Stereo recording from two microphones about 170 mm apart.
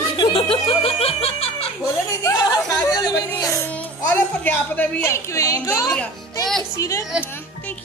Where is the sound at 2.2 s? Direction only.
20° left (ahead or behind).